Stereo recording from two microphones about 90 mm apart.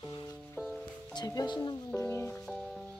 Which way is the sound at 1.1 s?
50° left (ahead or behind).